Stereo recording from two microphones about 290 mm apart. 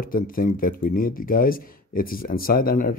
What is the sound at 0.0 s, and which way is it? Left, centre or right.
Speech, left.